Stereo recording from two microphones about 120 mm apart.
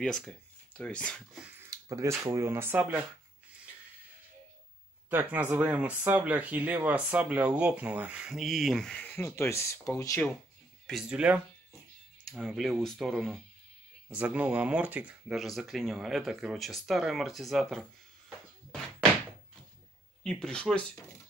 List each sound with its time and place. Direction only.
0.7 s speech: 10° left (ahead or behind)
1.7 s speech: 25° right (ahead or behind)
5.1 s speech: 15° right (ahead or behind); by 9.2 s 5° left (ahead or behind)
9.2 s speech: 25° left (ahead or behind)
10.9 s speech: 5° right (ahead or behind)
12.3 s speech: centre (ahead or behind)
14.0 s speech: 10° right (ahead or behind)
15.3 s speech: centre (ahead or behind)
20.2 s speech: 5° left (ahead or behind)